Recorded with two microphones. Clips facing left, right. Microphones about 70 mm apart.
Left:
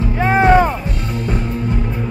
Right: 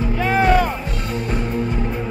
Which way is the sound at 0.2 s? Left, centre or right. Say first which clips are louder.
Left 5 dB; left.